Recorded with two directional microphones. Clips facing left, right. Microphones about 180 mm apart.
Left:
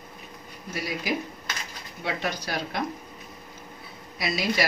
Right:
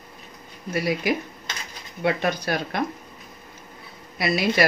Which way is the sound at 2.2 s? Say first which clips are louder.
Right 5 dB; 55° right (ahead or behind).